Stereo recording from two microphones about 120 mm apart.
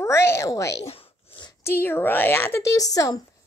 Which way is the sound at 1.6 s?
20° left (ahead or behind).